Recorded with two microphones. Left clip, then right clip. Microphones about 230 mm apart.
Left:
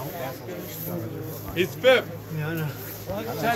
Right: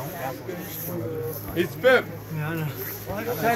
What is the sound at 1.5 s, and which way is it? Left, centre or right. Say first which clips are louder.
Speech: even; right.